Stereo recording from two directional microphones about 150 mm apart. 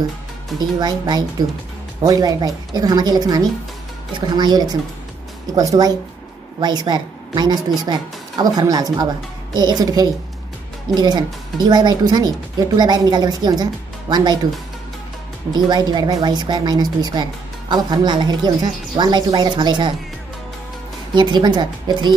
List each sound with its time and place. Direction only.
0.6 s a woman's voice: 30° right (ahead or behind)
15.5 s a woman's voice: 30° right (ahead or behind)
21.1 s a woman's voice: 30° right (ahead or behind)